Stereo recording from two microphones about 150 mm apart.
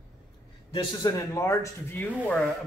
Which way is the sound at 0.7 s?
35° left (ahead or behind).